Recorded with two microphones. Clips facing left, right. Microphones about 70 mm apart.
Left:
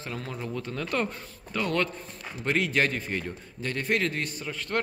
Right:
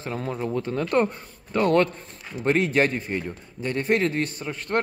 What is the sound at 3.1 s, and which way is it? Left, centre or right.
A man's voice, centre.